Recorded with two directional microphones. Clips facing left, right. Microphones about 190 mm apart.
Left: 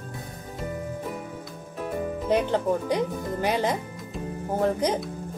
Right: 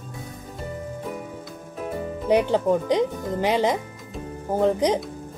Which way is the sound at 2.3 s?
15° right (ahead or behind).